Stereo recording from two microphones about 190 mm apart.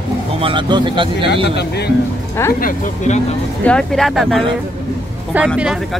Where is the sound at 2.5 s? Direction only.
45° left (ahead or behind).